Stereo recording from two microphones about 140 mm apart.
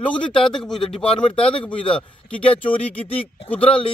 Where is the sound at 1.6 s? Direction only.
10° left (ahead or behind).